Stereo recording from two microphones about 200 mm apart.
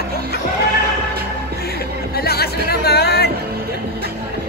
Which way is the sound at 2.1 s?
50° left (ahead or behind).